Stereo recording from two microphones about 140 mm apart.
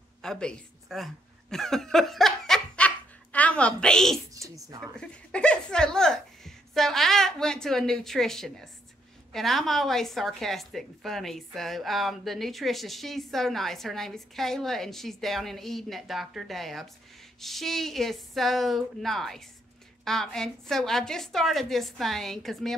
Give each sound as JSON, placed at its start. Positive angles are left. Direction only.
{"t": 0.2, "sound": "chuckle", "side_deg": 5}
{"t": 4.3, "sound": "speech", "side_deg": -25}
{"t": 4.9, "sound": "a woman's voice", "side_deg": 5}